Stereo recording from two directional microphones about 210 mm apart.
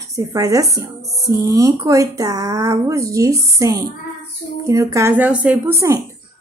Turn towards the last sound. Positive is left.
turn(degrees=-15)  # may be behind; listen again after turning